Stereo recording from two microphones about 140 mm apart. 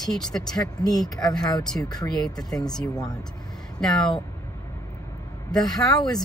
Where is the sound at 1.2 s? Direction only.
30° left (ahead or behind).